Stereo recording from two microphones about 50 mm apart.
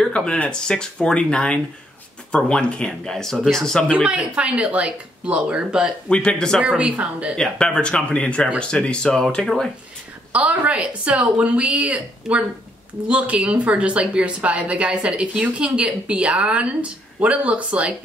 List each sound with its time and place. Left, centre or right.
0.0 s speech: centre
4.0 s speech: right
6.0 s speech: centre
6.9 s speech: right
7.3 s speech: centre
10.3 s speech: right